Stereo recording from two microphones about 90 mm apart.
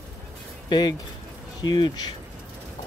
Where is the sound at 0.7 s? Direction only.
55° left (ahead or behind).